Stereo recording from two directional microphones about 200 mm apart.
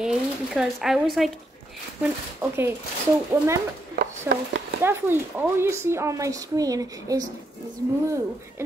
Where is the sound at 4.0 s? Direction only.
50° right (ahead or behind).